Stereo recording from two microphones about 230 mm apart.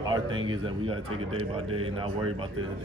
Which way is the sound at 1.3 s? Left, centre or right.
Right.